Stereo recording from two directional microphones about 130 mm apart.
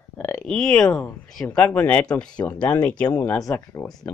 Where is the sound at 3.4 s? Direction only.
25° left (ahead or behind).